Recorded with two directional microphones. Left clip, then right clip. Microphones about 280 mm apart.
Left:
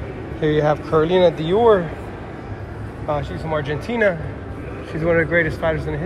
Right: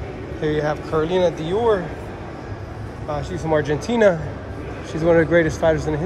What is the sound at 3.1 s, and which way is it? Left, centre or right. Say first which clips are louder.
Speech: right 1 dB; centre.